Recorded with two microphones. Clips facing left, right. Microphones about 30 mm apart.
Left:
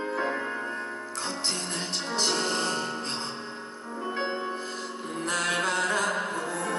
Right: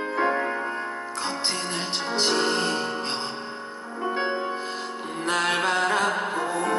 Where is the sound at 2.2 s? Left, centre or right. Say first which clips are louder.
Right 4 dB; right.